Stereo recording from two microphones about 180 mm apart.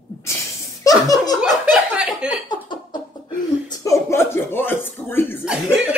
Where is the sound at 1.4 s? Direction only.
5° right (ahead or behind).